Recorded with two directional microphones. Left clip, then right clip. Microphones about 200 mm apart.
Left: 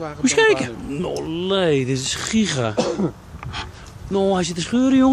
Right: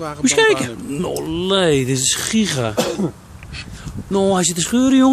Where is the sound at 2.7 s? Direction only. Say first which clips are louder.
Right 1 dB; 20° right (ahead or behind).